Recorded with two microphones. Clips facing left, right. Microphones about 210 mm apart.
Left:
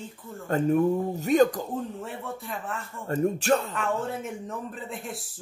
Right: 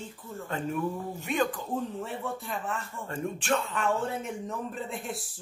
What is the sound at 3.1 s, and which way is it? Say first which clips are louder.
Speech: left 6 dB; 40° left (ahead or behind).